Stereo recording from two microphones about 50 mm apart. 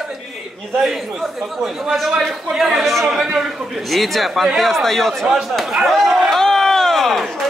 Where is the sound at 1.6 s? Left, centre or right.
Centre.